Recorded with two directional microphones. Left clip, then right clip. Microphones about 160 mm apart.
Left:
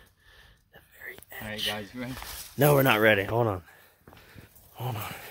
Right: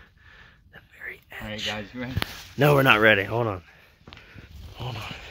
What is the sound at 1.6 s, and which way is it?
Speech, 15° left (ahead or behind).